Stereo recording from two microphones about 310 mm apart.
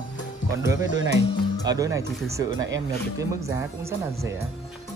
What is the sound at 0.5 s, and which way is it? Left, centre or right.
Speech, centre.